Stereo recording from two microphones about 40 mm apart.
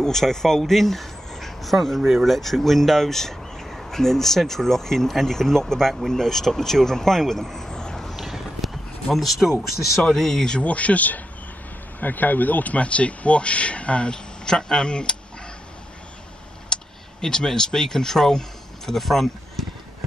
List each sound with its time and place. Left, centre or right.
0.0 s speech: centre
8.2 s clip-clop: centre
9.1 s speech: centre
10.6 s speech: left
12.0 s speech: left
14.1 s speech: centre
16.6 s speech: centre